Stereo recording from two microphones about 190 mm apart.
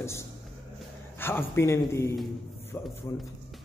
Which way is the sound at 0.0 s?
15° left (ahead or behind).